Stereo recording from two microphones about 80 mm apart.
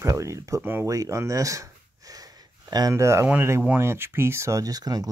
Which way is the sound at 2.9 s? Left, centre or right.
Right.